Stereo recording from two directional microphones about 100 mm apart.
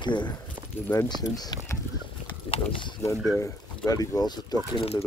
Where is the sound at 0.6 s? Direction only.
25° right (ahead or behind).